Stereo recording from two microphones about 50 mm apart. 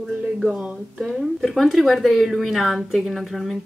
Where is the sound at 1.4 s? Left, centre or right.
Centre.